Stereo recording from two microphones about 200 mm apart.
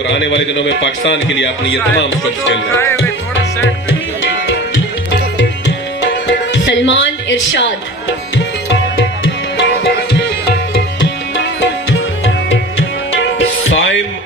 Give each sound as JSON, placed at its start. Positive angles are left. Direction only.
{"t": 0.1, "sound": "a man's voice", "side_deg": 65}
{"t": 2.7, "sound": "music", "side_deg": 10}
{"t": 6.2, "sound": "music", "side_deg": 65}
{"t": 10.1, "sound": "music", "side_deg": 60}
{"t": 13.4, "sound": "music", "side_deg": 75}